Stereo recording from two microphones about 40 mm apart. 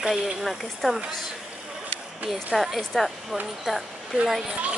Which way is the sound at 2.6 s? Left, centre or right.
Centre.